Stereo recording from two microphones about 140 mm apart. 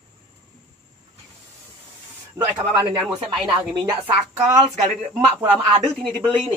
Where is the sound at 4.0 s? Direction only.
Centre (ahead or behind).